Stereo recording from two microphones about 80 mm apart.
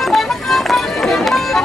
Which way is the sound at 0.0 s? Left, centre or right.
Centre.